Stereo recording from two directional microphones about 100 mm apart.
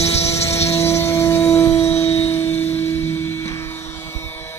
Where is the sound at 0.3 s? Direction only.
25° left (ahead or behind).